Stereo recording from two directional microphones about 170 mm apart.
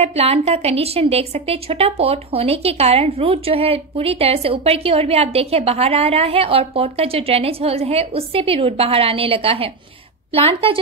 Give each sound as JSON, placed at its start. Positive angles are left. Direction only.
{"t": 0.0, "sound": "a woman's voice", "side_deg": -35}